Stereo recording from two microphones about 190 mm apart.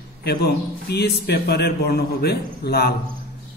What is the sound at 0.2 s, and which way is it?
A man's voice, 60° left (ahead or behind).